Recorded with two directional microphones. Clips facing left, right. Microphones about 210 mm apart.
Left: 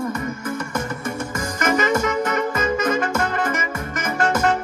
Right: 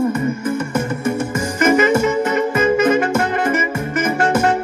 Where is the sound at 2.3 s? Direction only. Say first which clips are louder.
Right 6 dB; 25° right (ahead or behind).